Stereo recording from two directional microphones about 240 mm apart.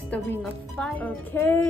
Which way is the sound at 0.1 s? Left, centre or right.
Centre.